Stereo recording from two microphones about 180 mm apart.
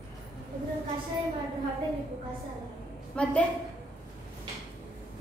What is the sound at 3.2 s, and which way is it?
Speech, 5° left (ahead or behind).